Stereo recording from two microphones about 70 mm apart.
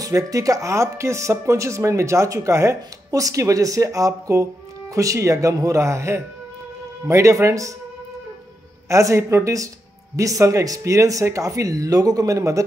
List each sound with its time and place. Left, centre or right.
0.0 s speech: right
8.8 s speech: right